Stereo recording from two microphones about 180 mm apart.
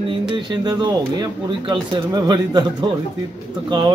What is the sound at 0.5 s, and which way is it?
Speech, 25° right (ahead or behind).